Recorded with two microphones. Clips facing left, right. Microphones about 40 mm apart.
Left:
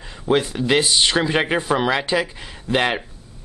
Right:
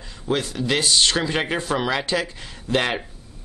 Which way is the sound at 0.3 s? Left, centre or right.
Left.